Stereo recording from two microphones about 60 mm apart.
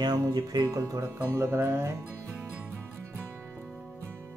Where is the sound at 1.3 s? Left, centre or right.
Right.